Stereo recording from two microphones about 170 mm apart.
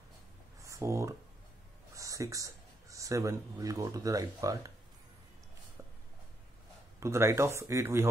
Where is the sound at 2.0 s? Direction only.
20° right (ahead or behind).